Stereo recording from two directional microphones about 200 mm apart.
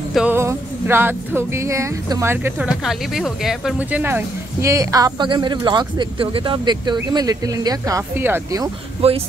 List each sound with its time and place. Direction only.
0.1 s speech: 10° right (ahead or behind)
9.0 s speech: 30° right (ahead or behind)